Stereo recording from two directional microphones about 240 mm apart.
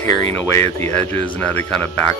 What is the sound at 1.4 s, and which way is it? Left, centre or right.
Speech, centre.